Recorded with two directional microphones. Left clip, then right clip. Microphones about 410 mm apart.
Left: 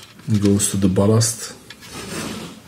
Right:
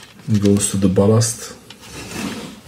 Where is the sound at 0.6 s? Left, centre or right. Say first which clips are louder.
Right 2 dB; centre.